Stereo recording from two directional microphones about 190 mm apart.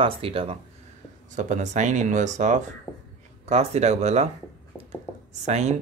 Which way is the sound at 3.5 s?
35° right (ahead or behind).